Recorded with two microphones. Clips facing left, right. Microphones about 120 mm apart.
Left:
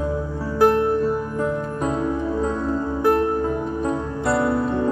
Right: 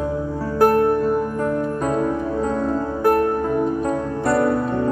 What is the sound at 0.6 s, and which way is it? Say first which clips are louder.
Music: right 1 dB; 45° right (ahead or behind).